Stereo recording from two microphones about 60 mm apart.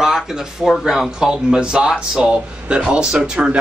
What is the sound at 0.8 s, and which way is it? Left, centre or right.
Speech, centre.